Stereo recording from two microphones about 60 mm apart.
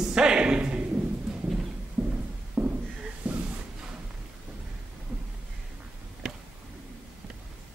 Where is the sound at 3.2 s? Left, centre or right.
Right.